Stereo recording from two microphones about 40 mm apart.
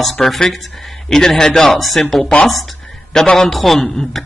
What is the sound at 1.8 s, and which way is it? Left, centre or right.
A man's voice, centre.